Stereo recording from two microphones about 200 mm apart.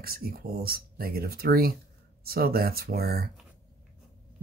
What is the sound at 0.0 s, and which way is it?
Speech, 50° right (ahead or behind).